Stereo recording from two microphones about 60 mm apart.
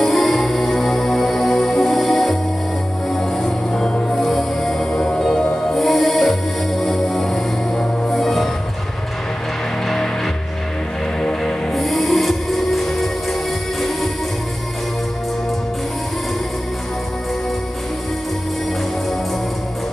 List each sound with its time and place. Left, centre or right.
0.0 s music: centre
3.4 s music: centre
4.3 s music: centre
5.7 s music: centre
11.1 s music: centre